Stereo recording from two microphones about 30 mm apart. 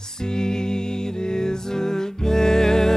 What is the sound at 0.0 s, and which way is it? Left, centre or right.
Music, left.